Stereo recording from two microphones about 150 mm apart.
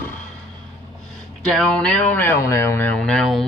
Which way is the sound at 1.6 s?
5° left (ahead or behind).